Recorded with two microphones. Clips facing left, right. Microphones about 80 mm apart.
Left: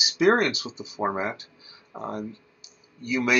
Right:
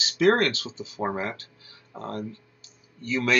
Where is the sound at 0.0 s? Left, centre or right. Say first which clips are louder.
Even; centre.